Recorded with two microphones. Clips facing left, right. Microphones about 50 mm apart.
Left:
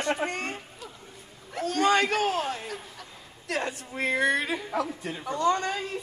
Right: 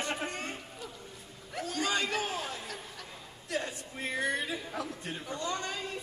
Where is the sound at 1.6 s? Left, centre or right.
Left.